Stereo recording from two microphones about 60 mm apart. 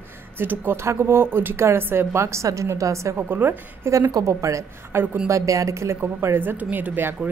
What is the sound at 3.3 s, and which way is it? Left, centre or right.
Speech, right.